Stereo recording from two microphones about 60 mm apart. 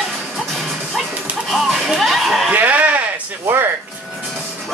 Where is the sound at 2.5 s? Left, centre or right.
Right.